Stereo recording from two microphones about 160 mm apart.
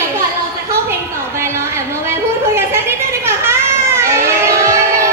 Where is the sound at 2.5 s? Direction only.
15° right (ahead or behind).